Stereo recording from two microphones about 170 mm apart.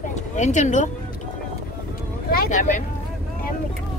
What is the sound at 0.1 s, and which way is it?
Speech, 45° left (ahead or behind).